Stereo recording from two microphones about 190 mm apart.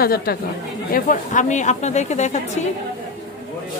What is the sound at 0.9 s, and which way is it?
A woman's voice, 40° left (ahead or behind).